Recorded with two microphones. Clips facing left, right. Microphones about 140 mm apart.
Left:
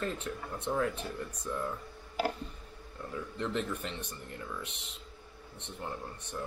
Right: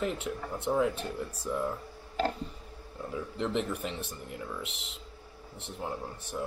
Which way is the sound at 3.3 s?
25° right (ahead or behind).